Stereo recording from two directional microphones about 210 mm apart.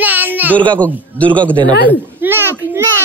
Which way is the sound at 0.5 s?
5° left (ahead or behind).